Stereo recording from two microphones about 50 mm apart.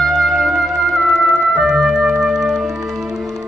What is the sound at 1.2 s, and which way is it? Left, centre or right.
Organ, centre.